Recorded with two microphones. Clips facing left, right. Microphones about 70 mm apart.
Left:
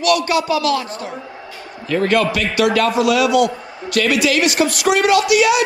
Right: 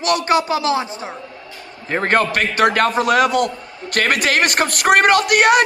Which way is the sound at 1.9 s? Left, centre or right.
Right.